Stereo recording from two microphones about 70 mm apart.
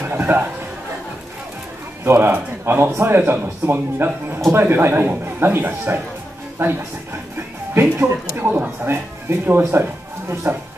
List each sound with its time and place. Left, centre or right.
0.1 s a man's voice: right
2.0 s a man's voice: right